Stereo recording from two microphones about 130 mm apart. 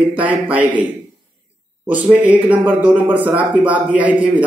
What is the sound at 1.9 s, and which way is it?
Speech, 10° right (ahead or behind).